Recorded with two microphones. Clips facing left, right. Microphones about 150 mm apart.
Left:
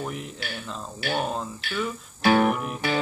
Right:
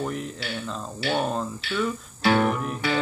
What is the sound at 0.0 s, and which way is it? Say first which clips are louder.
Speech: right 3 dB; 5° left (ahead or behind).